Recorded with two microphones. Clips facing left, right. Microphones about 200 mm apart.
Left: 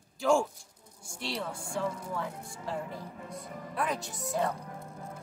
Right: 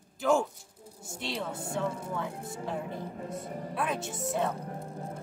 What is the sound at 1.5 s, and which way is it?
Speech, 25° right (ahead or behind).